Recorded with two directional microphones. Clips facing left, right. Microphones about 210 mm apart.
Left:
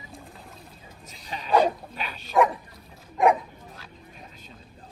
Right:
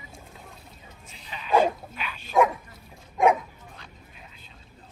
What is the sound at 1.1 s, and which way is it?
Dog, 40° left (ahead or behind).